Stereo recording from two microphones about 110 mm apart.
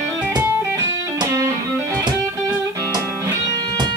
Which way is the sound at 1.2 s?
30° right (ahead or behind).